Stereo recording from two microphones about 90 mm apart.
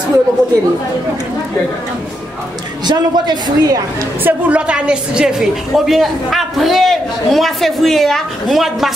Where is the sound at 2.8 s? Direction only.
50° right (ahead or behind).